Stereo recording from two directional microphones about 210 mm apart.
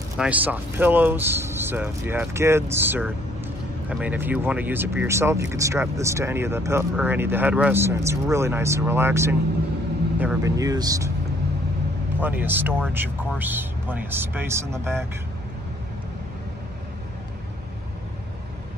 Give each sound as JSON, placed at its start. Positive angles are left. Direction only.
{"t": 0.2, "sound": "speech", "side_deg": -5}
{"t": 12.2, "sound": "speech", "side_deg": -10}